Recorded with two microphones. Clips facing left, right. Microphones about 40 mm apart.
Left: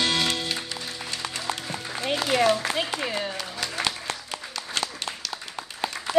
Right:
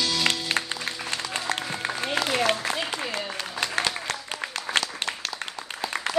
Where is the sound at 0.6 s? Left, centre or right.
Right.